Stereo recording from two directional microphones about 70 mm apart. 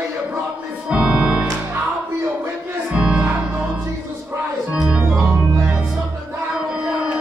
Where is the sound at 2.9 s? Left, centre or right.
Centre.